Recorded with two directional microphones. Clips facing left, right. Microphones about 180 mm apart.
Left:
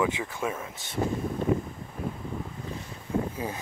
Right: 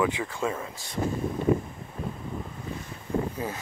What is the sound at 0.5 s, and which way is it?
Speech, 5° left (ahead or behind).